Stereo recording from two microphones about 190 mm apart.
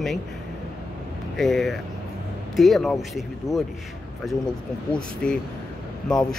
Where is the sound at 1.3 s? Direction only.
Centre (ahead or behind).